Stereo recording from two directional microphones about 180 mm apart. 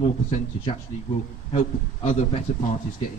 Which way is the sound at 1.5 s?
30° left (ahead or behind).